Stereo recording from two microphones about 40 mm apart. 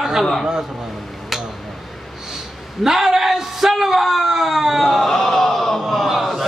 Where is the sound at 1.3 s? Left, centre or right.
Centre.